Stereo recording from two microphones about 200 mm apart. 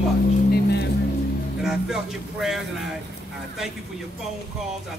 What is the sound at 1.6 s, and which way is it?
A man's voice, centre (ahead or behind).